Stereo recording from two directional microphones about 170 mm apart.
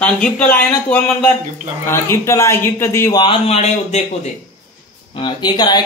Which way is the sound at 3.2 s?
35° left (ahead or behind).